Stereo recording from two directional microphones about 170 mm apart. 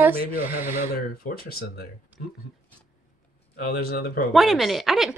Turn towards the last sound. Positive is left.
turn(degrees=0)  # may be behind; listen again after turning